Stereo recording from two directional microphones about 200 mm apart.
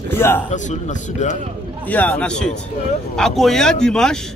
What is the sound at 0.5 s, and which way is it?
Speech, 35° left (ahead or behind).